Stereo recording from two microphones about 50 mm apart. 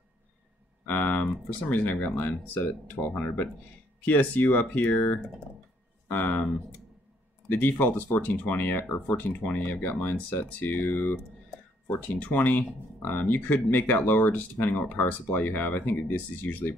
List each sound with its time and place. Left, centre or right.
0.8 s speech: left
7.5 s speech: left